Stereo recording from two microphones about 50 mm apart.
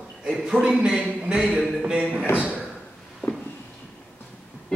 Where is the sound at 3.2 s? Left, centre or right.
Left.